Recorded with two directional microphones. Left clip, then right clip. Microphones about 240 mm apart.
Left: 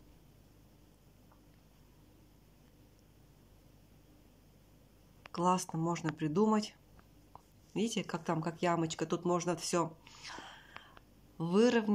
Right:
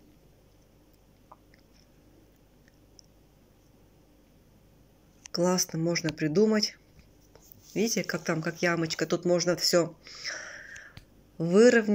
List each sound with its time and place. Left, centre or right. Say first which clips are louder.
5.3 s speech: right 5 dB; centre